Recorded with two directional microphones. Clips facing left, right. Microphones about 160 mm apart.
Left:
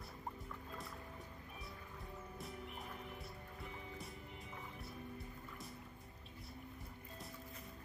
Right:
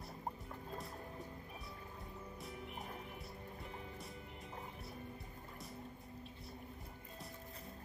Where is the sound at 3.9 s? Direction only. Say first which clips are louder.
Right 1 dB; centre (ahead or behind).